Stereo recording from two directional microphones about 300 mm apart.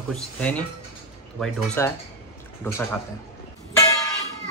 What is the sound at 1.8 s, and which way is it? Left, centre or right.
A man's voice, centre.